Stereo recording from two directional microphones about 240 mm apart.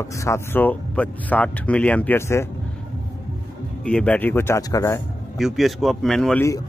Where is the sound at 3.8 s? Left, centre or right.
Centre.